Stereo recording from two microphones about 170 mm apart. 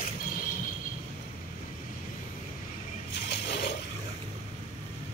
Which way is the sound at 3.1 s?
85° left.